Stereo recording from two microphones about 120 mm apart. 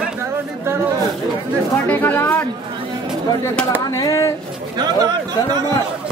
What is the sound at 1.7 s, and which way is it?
Speech, 15° left (ahead or behind).